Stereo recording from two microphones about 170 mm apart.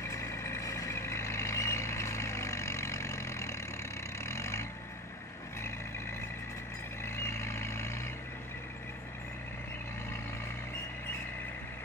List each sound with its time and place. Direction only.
0.0 s vehicle: 15° left (ahead or behind)
7.1 s vehicle: 15° left (ahead or behind)